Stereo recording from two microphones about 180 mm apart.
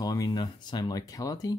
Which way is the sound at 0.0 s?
20° left (ahead or behind).